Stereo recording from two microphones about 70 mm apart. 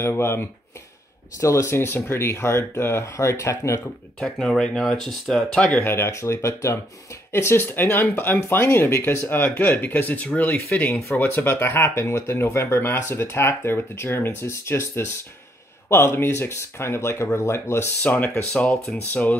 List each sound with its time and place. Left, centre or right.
0.0 s speech: left
1.4 s speech: left
4.2 s speech: centre
5.8 s speech: left
10.9 s speech: left
11.1 s speech: left
18.0 s speech: left
18.5 s speech: centre